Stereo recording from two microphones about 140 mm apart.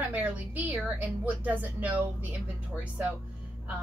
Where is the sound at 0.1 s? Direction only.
10° right (ahead or behind).